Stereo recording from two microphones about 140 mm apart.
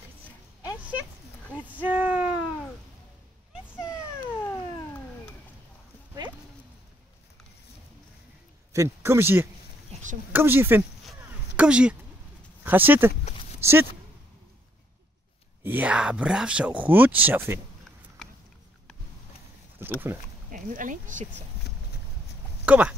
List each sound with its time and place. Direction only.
1.7 s a sound: 10° right (ahead or behind)
4.4 s cat: 15° left (ahead or behind)
8.7 s speech: 20° right (ahead or behind)
11.1 s a sound: 5° right (ahead or behind)
12.6 s speech: 15° right (ahead or behind)
15.6 s speech: 10° right (ahead or behind)
19.8 s a sound: 15° right (ahead or behind)
20.5 s speech: 70° right (ahead or behind)
22.7 s speech: 10° right (ahead or behind)